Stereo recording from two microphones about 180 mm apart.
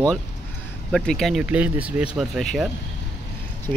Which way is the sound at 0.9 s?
5° left (ahead or behind).